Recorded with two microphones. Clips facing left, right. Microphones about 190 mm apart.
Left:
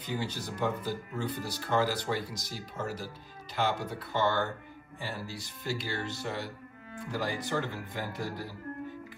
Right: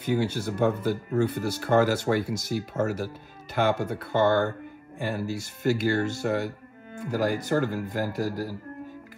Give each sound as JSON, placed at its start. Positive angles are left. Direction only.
{"t": 0.0, "sound": "speech", "side_deg": -55}